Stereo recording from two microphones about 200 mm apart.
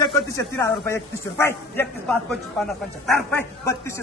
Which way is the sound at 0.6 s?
15° left (ahead or behind).